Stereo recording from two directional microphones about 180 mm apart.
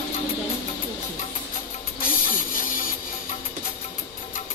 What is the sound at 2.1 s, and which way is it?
Printer, 50° left (ahead or behind).